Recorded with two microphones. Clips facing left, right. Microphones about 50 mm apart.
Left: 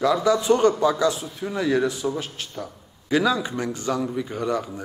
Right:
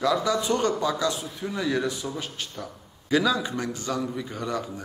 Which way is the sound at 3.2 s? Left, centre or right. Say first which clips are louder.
Left 3 dB; centre.